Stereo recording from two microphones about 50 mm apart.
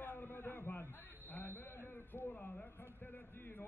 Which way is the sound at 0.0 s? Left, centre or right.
Left.